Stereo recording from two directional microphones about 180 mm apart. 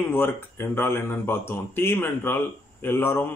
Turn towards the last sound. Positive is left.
turn(degrees=10)  # may be behind; listen again after turning